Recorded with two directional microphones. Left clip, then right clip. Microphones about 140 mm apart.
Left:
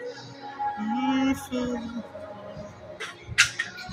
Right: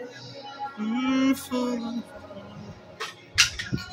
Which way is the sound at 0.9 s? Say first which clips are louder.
Right 3 dB; 15° right (ahead or behind).